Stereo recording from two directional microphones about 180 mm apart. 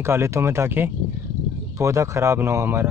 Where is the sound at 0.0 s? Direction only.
15° right (ahead or behind).